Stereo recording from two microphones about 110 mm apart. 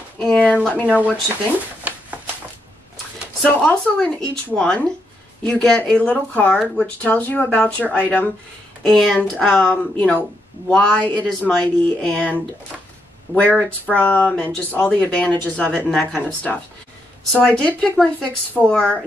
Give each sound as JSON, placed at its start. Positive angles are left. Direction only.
{"t": 0.2, "sound": "speech", "side_deg": 10}
{"t": 0.8, "sound": "speech", "side_deg": -10}
{"t": 1.9, "sound": "a sound", "side_deg": -15}
{"t": 3.4, "sound": "speech", "side_deg": 10}
{"t": 8.8, "sound": "speech", "side_deg": 0}
{"t": 17.4, "sound": "speech", "side_deg": 10}